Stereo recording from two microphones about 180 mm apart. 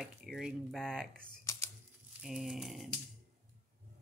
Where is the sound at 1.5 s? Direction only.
15° left (ahead or behind).